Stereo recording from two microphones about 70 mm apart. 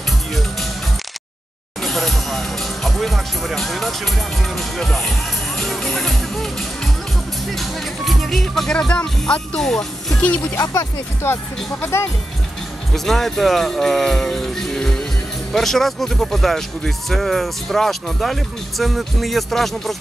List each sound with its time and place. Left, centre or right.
1.8 s speech: centre
10.6 s speech: left
11.8 s speech: left
12.9 s speech: centre